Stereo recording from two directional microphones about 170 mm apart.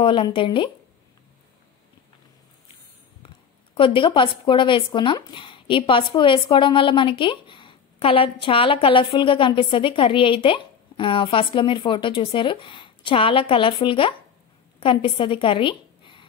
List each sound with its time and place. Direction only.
0.0 s speech: 30° left (ahead or behind)
3.7 s a woman's voice: 30° left (ahead or behind)